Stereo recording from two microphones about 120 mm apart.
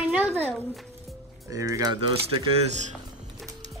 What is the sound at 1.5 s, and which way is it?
Speech, 30° right (ahead or behind).